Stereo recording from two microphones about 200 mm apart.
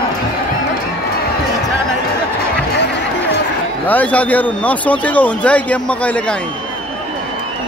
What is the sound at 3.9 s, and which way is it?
Speech, 10° left (ahead or behind).